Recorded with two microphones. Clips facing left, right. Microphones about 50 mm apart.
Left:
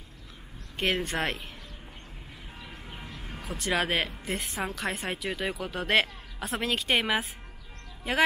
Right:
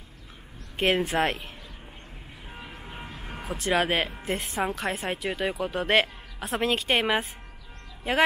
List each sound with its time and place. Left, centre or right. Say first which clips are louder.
0.7 s speech: right 5 dB; centre
2.9 s vehicle: right 3 dB; right
3.5 s speech: right 3 dB; centre